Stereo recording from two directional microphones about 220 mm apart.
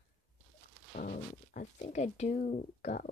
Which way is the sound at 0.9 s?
40° left (ahead or behind).